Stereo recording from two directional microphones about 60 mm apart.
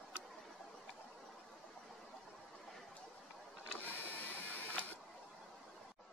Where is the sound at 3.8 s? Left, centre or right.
Left.